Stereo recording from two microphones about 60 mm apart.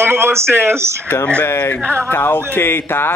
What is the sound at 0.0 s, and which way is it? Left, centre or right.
Speech, right.